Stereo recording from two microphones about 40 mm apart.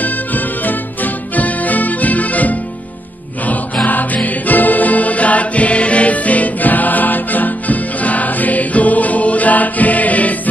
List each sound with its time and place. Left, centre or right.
0.0 s music: left
3.8 s music: left